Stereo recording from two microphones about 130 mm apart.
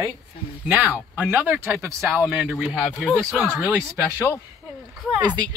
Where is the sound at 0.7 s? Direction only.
10° right (ahead or behind).